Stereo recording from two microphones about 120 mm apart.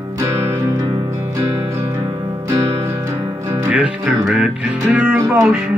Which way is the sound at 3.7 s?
15° right (ahead or behind).